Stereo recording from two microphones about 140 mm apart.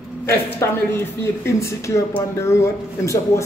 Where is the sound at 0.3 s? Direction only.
20° left (ahead or behind).